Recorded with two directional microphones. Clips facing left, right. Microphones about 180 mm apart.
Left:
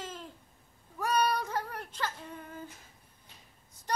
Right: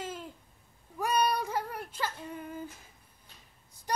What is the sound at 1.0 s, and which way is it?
Child singing, 10° right (ahead or behind).